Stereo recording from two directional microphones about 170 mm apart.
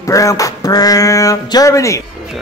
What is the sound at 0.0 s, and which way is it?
Speech, 20° left (ahead or behind).